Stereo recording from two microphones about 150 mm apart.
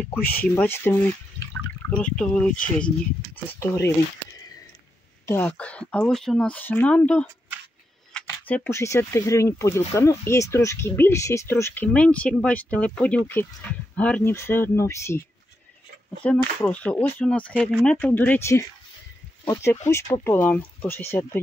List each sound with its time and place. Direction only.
0.6 s speech: 15° left (ahead or behind)
5.2 s speech: 15° left (ahead or behind)